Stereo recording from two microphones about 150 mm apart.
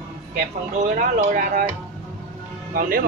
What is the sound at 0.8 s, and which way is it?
Speech, 55° right (ahead or behind).